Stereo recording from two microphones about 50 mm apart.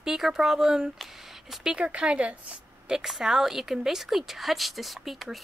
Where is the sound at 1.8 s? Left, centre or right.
Right.